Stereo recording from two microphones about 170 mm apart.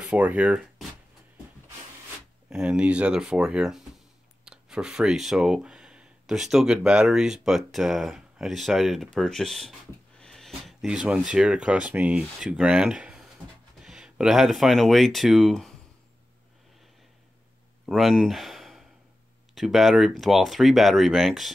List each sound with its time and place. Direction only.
0.0 s speech: 10° right (ahead or behind)
2.5 s speech: 5° right (ahead or behind)
17.8 s speech: centre (ahead or behind)